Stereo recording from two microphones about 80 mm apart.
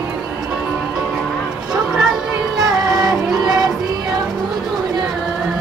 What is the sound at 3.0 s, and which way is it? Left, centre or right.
Music, right.